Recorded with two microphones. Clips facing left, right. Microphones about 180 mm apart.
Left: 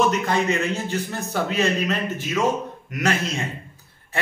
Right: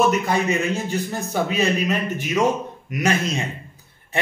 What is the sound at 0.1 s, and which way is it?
A man's voice, 10° right (ahead or behind).